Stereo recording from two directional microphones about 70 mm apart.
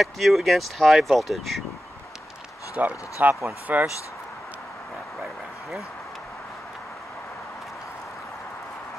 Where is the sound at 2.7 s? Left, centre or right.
Right.